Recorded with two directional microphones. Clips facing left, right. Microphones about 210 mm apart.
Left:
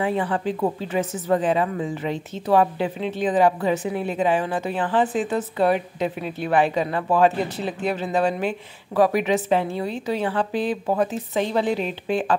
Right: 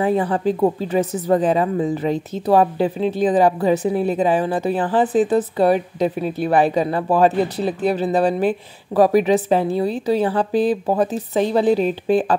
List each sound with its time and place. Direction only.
0.0 s speech: 40° right (ahead or behind)